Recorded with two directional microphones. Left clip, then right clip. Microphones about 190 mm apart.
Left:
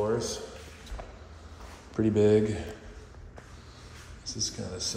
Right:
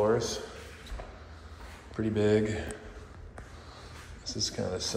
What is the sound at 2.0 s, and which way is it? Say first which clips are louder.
Speech: left 4 dB; 25° left (ahead or behind).